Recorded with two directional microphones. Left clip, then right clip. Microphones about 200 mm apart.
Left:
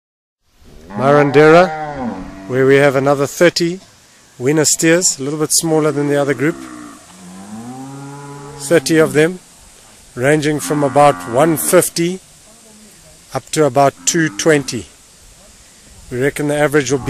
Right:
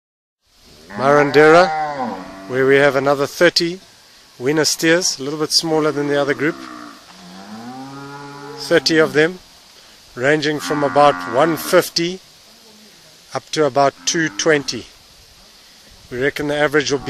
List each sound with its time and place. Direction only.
0.9 s speech: centre (ahead or behind)
1.7 s a sound: 30° right (ahead or behind)
2.5 s speech: 5° left (ahead or behind)
8.6 s speech: centre (ahead or behind)
13.6 s speech: 10° left (ahead or behind)
16.1 s speech: 5° left (ahead or behind)